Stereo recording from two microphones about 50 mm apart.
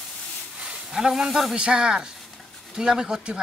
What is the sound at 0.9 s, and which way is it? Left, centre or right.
Speech, centre.